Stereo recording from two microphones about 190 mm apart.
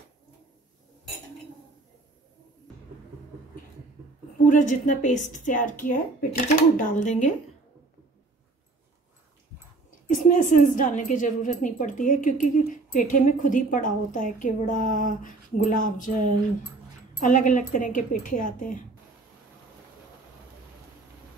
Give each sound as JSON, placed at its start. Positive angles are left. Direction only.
{"t": 4.5, "sound": "a woman's voice", "side_deg": 40}
{"t": 10.0, "sound": "a woman's voice", "side_deg": 45}